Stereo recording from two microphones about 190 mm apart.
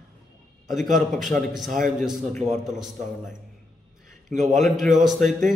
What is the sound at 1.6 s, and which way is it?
Speech, 45° right (ahead or behind).